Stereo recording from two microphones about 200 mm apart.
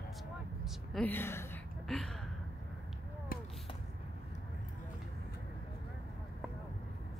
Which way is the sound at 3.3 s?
45° left (ahead or behind).